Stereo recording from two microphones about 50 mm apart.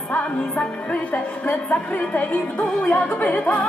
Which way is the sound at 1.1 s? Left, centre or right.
Left.